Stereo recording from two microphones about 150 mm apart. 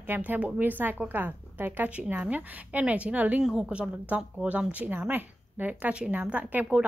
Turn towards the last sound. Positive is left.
turn(degrees=-10)  # may be behind; listen again after turning